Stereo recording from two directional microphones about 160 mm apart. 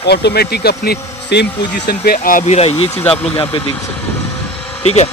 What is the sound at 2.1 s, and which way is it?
Speech, 60° left (ahead or behind).